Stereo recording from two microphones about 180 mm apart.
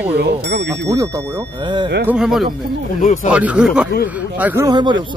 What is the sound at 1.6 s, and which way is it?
Speech, 25° right (ahead or behind).